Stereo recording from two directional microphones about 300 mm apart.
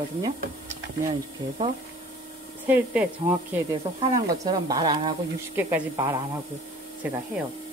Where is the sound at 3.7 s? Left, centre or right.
Centre.